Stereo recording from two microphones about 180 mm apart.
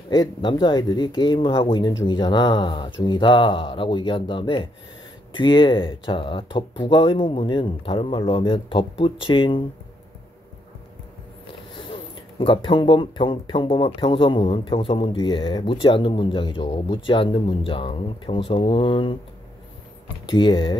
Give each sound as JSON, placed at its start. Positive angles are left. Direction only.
{"t": 0.1, "sound": "speech", "side_deg": 25}
{"t": 11.7, "sound": "speech", "side_deg": 30}
{"t": 20.2, "sound": "speech", "side_deg": 25}